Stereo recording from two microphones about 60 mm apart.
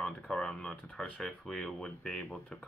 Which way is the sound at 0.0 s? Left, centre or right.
Centre.